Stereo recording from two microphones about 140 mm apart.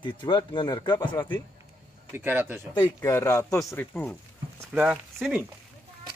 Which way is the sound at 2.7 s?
25° left (ahead or behind).